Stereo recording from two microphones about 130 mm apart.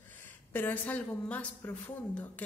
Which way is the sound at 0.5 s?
15° left (ahead or behind).